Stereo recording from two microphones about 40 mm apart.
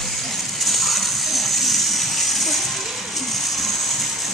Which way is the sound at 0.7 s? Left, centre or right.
Centre.